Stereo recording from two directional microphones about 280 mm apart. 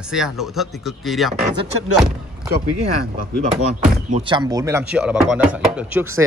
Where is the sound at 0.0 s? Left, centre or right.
Centre.